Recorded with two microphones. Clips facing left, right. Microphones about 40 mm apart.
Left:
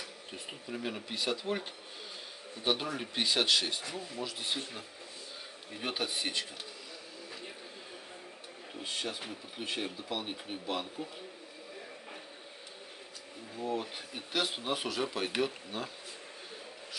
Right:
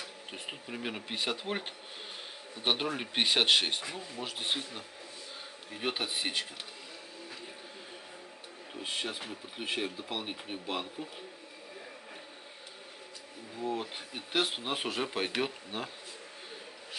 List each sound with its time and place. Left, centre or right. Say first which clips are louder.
0.3 s speech: right 1 dB; right
5.7 s speech: right 1 dB; centre
8.8 s speech: right 1 dB; right
13.6 s speech: even; centre
14.3 s speech: right 1 dB; right